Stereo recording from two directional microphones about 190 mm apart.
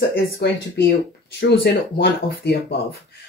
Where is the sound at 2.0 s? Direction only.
55° left (ahead or behind).